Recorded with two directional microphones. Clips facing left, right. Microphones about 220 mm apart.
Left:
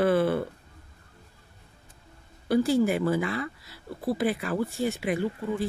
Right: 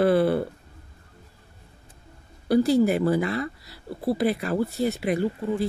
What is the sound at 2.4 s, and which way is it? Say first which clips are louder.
Speech: right 3 dB; 40° right (ahead or behind).